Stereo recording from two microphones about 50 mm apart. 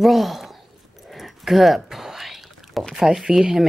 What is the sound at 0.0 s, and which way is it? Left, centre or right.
Speech, centre.